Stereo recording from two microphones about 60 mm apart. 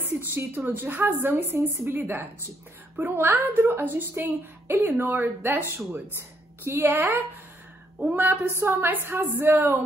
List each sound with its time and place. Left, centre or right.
0.3 s a woman's voice: right
8.2 s a woman's voice: right